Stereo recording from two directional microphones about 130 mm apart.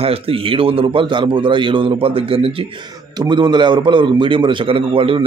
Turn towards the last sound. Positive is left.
turn(degrees=-45)  # may be behind; listen again after turning